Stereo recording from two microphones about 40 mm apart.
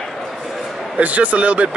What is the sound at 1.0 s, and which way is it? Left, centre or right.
Speech, right.